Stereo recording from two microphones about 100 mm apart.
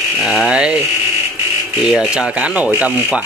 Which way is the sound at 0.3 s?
5° right (ahead or behind).